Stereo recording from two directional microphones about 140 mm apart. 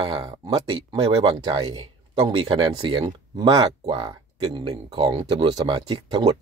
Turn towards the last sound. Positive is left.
turn(degrees=-30)  # may be behind; listen again after turning